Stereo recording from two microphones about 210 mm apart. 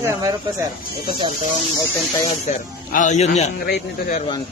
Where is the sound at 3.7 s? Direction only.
45° left (ahead or behind).